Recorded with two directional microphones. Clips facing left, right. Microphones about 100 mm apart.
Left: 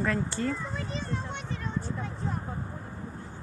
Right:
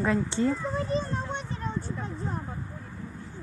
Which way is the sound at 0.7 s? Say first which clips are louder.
Right 6 dB; 35° right (ahead or behind).